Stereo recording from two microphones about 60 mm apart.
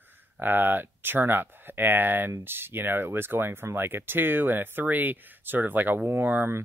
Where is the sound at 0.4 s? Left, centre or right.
Right.